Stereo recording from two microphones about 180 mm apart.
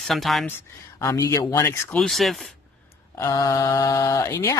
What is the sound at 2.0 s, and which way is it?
Speech, centre (ahead or behind).